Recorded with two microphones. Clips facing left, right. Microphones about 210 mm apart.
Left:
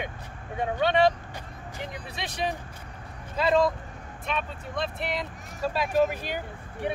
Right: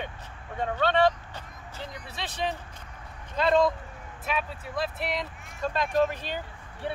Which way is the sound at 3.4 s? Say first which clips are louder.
Even; centre (ahead or behind).